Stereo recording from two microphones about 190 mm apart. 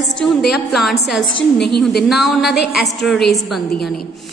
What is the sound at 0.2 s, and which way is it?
A woman's voice, centre (ahead or behind).